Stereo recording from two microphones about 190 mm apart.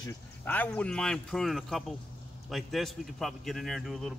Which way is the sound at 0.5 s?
10° left (ahead or behind).